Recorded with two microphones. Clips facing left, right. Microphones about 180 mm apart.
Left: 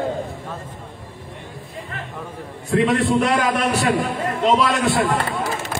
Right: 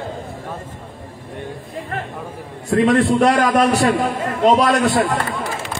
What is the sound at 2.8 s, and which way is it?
A man's voice, 45° right (ahead or behind).